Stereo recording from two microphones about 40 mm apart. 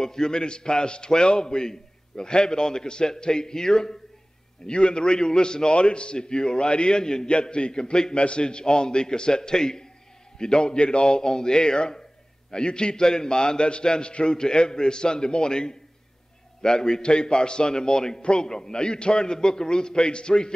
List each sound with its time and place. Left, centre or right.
0.0 s a man's voice: centre